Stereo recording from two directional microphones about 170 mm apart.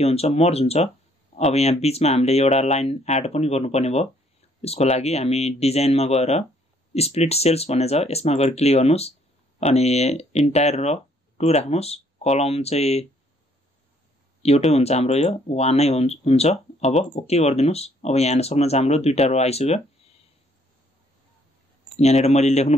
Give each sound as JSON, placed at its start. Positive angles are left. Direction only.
{"t": 0.0, "sound": "speech", "side_deg": 35}
{"t": 14.7, "sound": "speech", "side_deg": 40}
{"t": 21.9, "sound": "speech", "side_deg": 40}